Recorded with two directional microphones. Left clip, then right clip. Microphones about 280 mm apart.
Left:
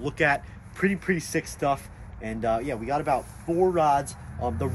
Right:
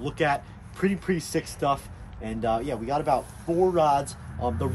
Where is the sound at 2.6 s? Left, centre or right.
Right.